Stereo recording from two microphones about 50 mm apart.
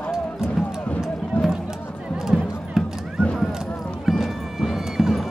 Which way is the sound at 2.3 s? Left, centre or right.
Centre.